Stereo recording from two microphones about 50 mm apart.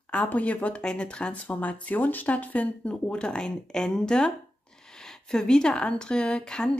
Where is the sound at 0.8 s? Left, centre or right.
Centre.